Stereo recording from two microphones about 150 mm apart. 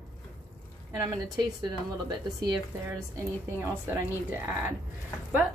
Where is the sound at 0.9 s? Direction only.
25° right (ahead or behind).